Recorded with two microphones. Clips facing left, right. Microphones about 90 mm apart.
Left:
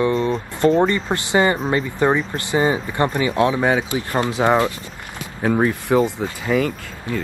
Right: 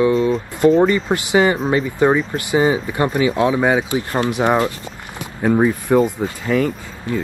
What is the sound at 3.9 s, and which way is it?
Speech, 20° left (ahead or behind).